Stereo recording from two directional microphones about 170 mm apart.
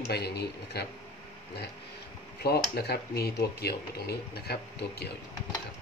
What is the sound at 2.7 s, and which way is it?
Speech, 70° left (ahead or behind).